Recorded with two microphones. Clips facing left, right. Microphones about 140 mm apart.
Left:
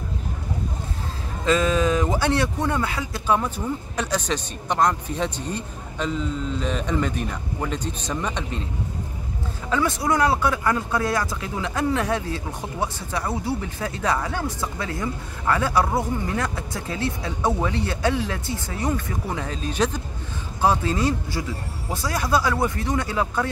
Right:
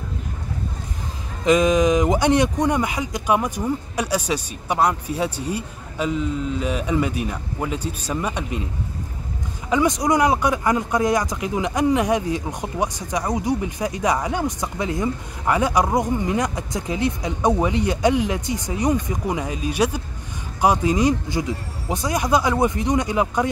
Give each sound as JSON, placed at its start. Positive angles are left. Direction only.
{"t": 1.4, "sound": "speech", "side_deg": -15}
{"t": 9.7, "sound": "speech", "side_deg": -15}